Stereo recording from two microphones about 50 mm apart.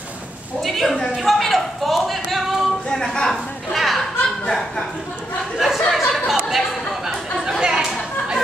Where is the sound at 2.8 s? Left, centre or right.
Centre.